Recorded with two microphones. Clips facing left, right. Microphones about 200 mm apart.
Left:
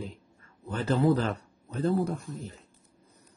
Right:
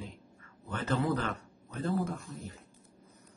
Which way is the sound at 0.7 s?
30° left (ahead or behind).